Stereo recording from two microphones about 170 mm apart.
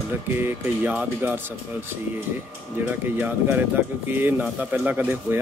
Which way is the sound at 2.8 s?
10° right (ahead or behind).